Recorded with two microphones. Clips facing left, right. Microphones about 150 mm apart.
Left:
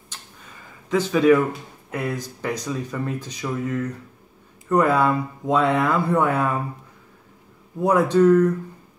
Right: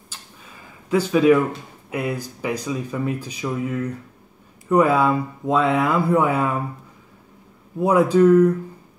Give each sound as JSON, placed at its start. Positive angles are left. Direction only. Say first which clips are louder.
{"t": 0.8, "sound": "speech", "louder": "right 1 dB", "side_deg": -10}
{"t": 7.8, "sound": "speech", "louder": "right 1 dB", "side_deg": -10}